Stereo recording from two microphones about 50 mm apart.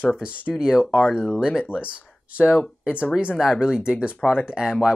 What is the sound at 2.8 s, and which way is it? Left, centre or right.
Speech, right.